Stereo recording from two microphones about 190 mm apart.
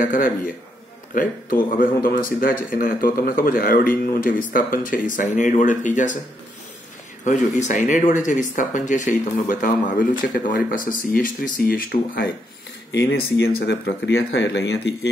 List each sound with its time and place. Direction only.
0.0 s speech: 45° left (ahead or behind)
7.2 s speech: 40° left (ahead or behind)
12.9 s speech: 65° left (ahead or behind)